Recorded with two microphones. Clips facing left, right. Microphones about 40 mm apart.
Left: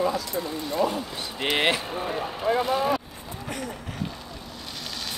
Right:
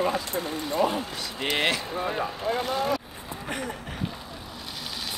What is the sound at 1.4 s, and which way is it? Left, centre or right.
Speech, centre.